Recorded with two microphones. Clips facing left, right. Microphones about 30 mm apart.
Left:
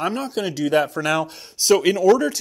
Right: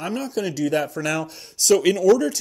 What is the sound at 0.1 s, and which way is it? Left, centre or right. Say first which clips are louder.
Speech: left 1 dB; centre.